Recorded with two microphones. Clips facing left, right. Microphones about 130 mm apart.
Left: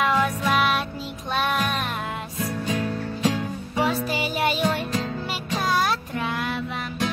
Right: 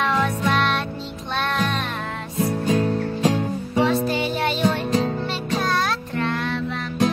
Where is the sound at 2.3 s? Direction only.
35° right (ahead or behind).